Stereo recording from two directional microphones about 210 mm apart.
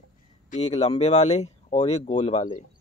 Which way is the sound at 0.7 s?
30° left (ahead or behind).